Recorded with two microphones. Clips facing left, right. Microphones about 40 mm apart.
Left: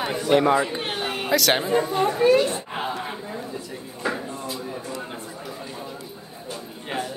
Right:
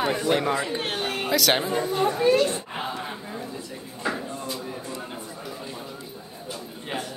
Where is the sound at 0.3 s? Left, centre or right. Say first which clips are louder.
Left 8 dB; left.